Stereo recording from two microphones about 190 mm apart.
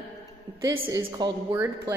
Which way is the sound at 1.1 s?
20° right (ahead or behind).